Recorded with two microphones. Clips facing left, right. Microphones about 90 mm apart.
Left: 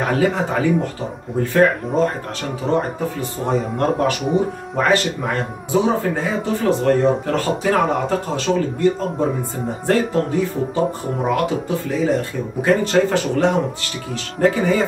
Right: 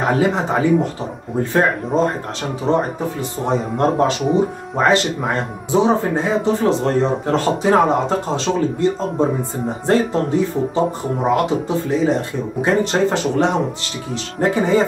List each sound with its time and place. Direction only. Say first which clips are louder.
0.0 s speech: right 1 dB; 20° right (ahead or behind)